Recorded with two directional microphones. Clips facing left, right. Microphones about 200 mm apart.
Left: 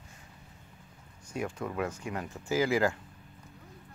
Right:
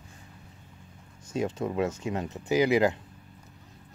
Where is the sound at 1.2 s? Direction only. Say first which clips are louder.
Right 5 dB; 25° right (ahead or behind).